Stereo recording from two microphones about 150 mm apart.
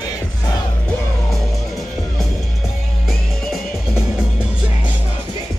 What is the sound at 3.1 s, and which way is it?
Music, centre (ahead or behind).